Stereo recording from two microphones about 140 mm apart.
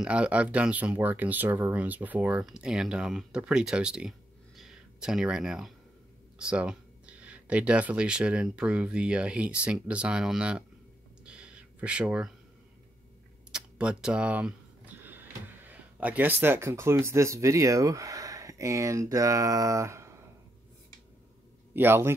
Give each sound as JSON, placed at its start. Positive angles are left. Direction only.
{"t": 0.0, "sound": "speech", "side_deg": -10}
{"t": 4.6, "sound": "a sound", "side_deg": -5}
{"t": 6.3, "sound": "speech", "side_deg": -5}
{"t": 11.2, "sound": "a sound", "side_deg": -5}
{"t": 13.5, "sound": "speech", "side_deg": -5}
{"t": 21.7, "sound": "speech", "side_deg": -15}